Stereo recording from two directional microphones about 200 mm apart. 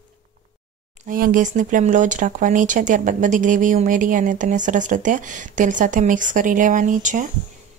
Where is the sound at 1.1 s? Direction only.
45° right (ahead or behind).